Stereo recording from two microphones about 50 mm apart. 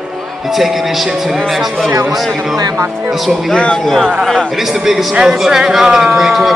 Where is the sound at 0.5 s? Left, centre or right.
Centre.